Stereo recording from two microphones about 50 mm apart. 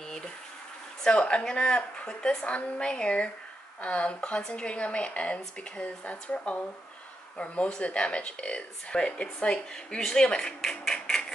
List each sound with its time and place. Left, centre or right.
1.0 s speech: left